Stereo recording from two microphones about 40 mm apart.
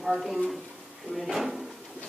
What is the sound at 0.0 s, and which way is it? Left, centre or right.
A woman's voice, centre.